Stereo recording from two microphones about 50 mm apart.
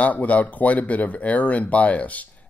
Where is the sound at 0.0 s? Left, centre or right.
Left.